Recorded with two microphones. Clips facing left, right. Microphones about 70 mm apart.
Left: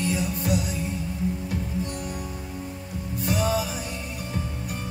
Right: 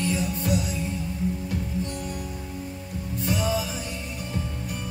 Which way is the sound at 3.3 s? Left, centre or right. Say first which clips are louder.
Left 2 dB; centre.